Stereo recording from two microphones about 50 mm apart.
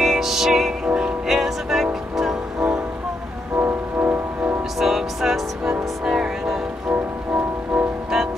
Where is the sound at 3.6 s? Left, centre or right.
Right.